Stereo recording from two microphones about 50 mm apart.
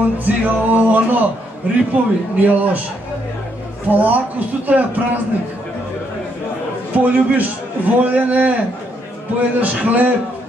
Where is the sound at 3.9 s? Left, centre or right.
Right.